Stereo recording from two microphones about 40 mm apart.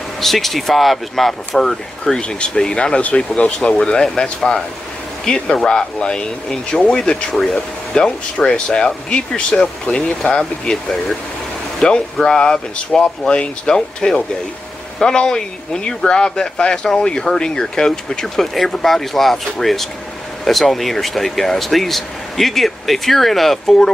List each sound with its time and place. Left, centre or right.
0.2 s speech: centre; by 3.5 s left
3.5 s speech: left